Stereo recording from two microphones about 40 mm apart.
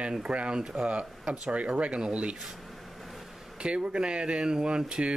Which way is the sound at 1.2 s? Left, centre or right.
Centre.